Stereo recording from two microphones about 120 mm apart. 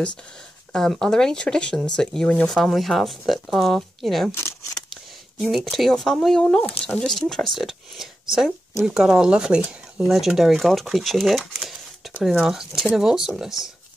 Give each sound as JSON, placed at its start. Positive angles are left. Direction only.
{"t": 0.7, "sound": "speech", "side_deg": 5}
{"t": 4.3, "sound": "speech", "side_deg": 20}
{"t": 5.4, "sound": "speech", "side_deg": 0}